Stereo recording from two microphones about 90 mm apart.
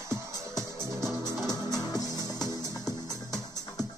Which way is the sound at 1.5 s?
45° left (ahead or behind).